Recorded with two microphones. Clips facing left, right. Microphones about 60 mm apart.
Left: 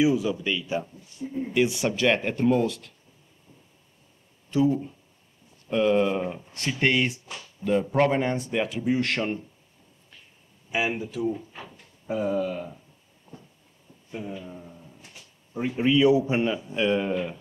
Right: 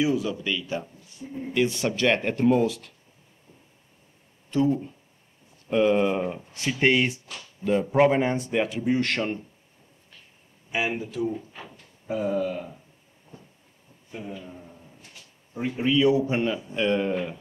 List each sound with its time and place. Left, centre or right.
0.0 s a man's voice: centre
4.5 s speech: centre
5.7 s a man's voice: centre
10.7 s a man's voice: centre
13.3 s train: right
14.3 s speech: centre
15.8 s a man's voice: centre